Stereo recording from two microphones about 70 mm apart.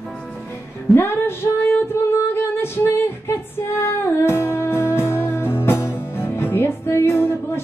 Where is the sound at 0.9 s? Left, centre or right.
Left.